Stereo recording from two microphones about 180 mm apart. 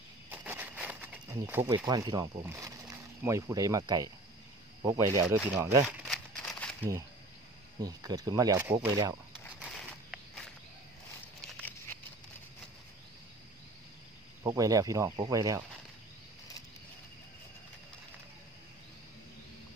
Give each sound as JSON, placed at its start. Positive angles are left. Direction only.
{"t": 0.3, "sound": "a sound", "side_deg": -10}
{"t": 2.4, "sound": "speech", "side_deg": -15}
{"t": 6.0, "sound": "crumpling", "side_deg": 5}
{"t": 7.8, "sound": "speech", "side_deg": -20}
{"t": 10.1, "sound": "walk", "side_deg": 0}
{"t": 14.4, "sound": "speech", "side_deg": -20}